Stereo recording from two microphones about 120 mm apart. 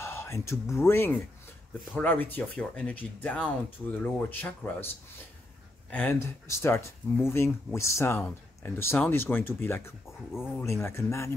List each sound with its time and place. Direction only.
0.0 s a sound: 20° left (ahead or behind)
0.7 s speech: 20° left (ahead or behind)
5.9 s speech: 15° left (ahead or behind)
6.1 s speech: 25° left (ahead or behind)